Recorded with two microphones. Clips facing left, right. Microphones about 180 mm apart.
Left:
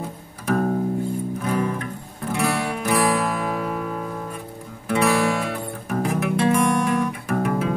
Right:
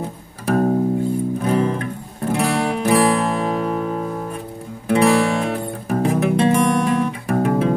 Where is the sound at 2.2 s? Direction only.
25° right (ahead or behind).